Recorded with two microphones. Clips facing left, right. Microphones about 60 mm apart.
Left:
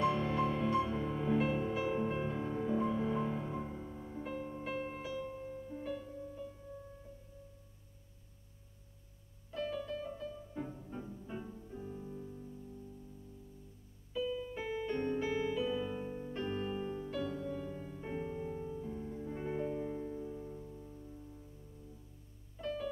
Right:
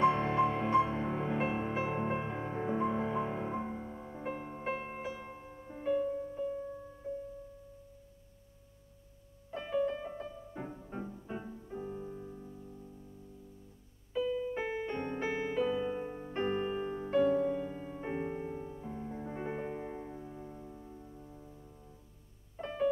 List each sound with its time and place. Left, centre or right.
0.0 s music: right
9.5 s music: right
11.2 s music: centre
11.7 s music: right
14.1 s music: right